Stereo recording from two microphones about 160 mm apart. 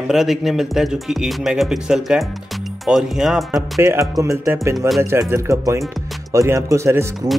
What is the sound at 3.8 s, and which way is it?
Speech, 20° right (ahead or behind).